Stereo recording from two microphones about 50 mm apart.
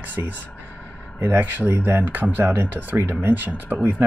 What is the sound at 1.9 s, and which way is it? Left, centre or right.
Speech, right.